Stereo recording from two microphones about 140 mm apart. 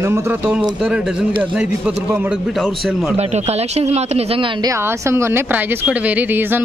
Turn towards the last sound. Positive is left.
turn(degrees=-15)  # may be behind; listen again after turning